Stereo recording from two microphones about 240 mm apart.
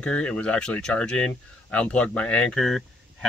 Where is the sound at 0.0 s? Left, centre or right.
Centre.